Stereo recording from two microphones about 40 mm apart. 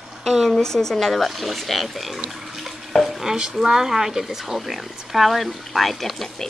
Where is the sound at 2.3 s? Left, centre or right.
Centre.